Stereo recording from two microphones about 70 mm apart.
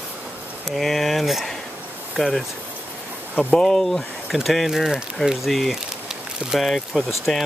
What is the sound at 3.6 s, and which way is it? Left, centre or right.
Speech, centre.